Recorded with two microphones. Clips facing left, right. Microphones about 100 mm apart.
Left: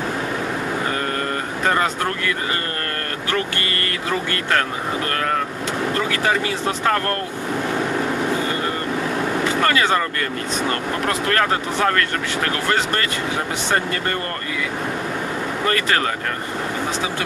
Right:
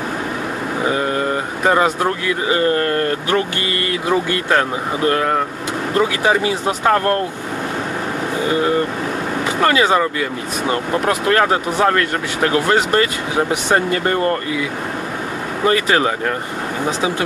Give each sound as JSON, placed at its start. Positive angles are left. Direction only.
{"t": 0.8, "sound": "speech", "side_deg": -15}
{"t": 9.6, "sound": "speech", "side_deg": -15}
{"t": 15.6, "sound": "speech", "side_deg": -15}